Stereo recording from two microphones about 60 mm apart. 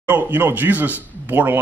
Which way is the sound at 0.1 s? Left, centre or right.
Right.